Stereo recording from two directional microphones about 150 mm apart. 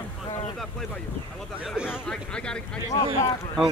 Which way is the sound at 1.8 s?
10° left (ahead or behind).